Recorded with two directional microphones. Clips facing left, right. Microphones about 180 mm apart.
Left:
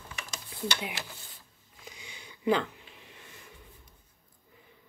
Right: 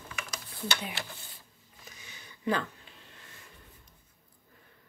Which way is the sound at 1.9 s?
15° left (ahead or behind).